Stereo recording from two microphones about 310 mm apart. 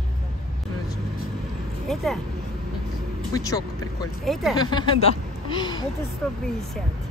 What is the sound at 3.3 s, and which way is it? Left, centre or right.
Speech, centre.